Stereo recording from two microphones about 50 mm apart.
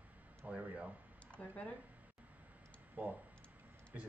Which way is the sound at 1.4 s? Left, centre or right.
Left.